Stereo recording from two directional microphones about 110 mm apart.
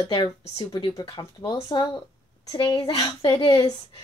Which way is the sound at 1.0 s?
45° left (ahead or behind).